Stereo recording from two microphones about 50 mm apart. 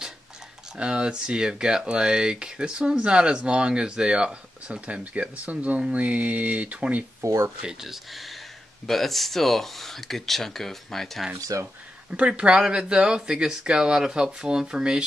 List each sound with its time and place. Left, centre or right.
0.7 s speech: centre
7.8 s speech: centre
12.1 s speech: centre